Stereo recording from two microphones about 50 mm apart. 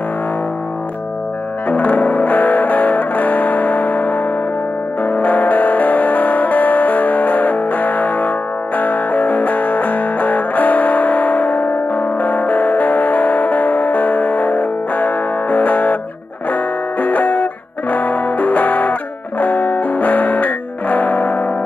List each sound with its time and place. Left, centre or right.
1.7 s music: left